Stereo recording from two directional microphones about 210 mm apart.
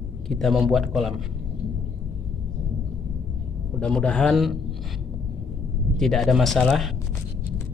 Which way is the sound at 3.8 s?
5° left (ahead or behind).